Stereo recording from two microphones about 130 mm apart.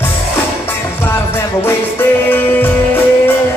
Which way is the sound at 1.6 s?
15° left (ahead or behind).